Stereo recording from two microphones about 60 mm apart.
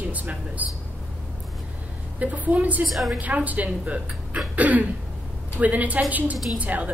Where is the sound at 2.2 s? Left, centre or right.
Right.